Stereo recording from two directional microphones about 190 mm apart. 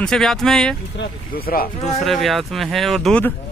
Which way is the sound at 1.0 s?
50° left (ahead or behind).